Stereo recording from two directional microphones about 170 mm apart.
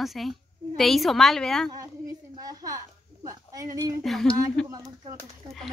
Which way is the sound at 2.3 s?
20° right (ahead or behind).